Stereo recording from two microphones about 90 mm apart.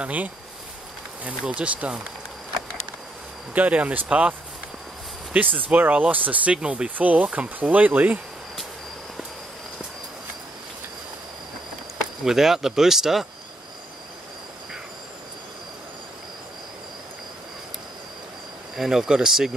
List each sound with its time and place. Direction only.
0.0 s speech: 15° right (ahead or behind)
3.5 s speech: 15° right (ahead or behind)
12.3 s speech: 5° right (ahead or behind)
18.8 s speech: 5° right (ahead or behind)